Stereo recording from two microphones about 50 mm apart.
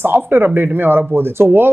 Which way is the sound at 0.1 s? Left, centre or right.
Right.